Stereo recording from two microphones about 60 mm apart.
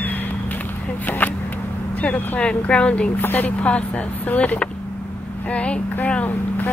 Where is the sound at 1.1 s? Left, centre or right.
Left.